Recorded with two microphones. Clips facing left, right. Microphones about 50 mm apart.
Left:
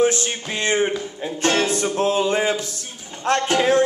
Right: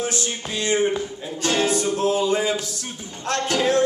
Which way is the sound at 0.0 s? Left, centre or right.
Left.